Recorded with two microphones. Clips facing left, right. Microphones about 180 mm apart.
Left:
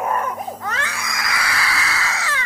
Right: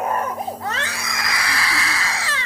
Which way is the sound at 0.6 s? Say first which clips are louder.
Even; 30° right (ahead or behind).